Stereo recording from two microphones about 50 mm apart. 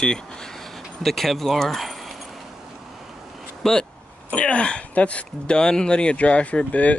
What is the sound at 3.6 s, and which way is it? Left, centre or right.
Speech, centre.